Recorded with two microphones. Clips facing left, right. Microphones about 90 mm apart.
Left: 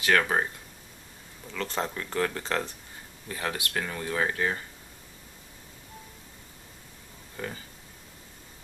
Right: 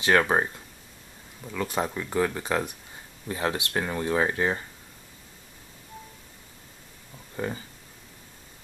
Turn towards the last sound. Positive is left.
turn(degrees=-20)  # may be behind; listen again after turning